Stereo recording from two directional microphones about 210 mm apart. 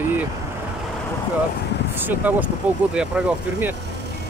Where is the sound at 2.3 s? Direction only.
5° right (ahead or behind).